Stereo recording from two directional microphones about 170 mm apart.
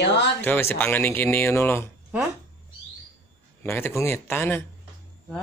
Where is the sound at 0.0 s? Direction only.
90° left.